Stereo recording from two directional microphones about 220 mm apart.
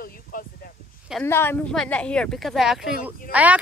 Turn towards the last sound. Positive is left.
turn(degrees=-5)  # may be behind; listen again after turning